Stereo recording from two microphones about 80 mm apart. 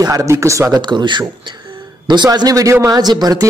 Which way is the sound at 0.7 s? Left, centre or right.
Right.